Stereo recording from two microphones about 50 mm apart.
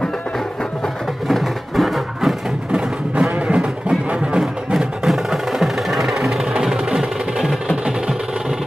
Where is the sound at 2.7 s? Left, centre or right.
Right.